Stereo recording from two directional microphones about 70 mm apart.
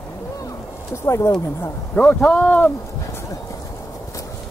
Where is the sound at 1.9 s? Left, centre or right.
Centre.